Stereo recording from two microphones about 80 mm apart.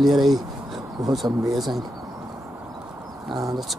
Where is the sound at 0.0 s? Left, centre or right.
Centre.